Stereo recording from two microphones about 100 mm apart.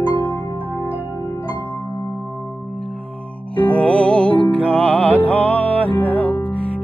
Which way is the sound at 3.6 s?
15° left (ahead or behind).